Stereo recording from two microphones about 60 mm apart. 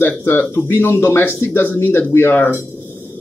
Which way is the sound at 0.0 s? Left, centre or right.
Left.